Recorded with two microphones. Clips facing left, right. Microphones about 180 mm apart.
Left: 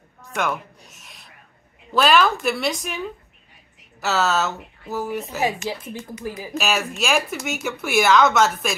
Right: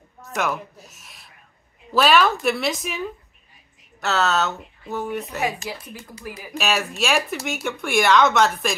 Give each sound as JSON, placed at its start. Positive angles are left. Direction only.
{"t": 0.2, "sound": "a sound", "side_deg": 0}
{"t": 1.9, "sound": "speech", "side_deg": 0}
{"t": 5.7, "sound": "speech", "side_deg": 30}
{"t": 6.6, "sound": "speech", "side_deg": 0}